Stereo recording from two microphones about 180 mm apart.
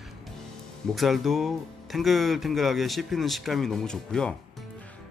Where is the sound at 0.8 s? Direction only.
Centre (ahead or behind).